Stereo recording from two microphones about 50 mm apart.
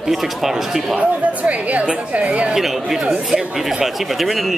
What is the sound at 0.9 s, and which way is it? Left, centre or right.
A woman's voice, right.